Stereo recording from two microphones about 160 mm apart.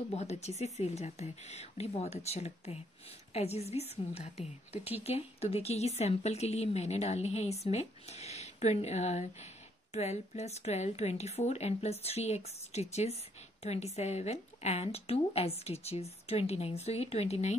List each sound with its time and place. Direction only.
0.1 s a woman's voice: 45° left (ahead or behind)